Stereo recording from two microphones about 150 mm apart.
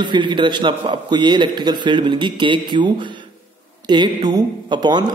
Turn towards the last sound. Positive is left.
turn(degrees=-30)  # may be behind; listen again after turning